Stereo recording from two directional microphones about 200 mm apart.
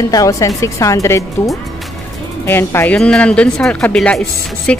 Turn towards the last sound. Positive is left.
turn(degrees=5)  # may be behind; listen again after turning